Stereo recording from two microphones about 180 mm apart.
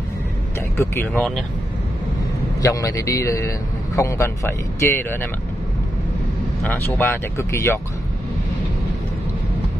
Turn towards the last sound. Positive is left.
turn(degrees=15)  # may be behind; listen again after turning